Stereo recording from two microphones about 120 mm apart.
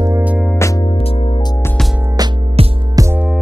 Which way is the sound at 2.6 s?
55° right (ahead or behind).